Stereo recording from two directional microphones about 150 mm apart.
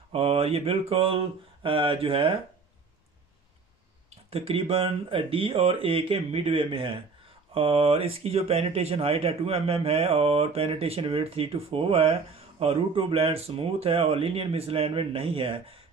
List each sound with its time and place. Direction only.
0.1 s speech: 40° right (ahead or behind)
4.3 s speech: 40° right (ahead or behind)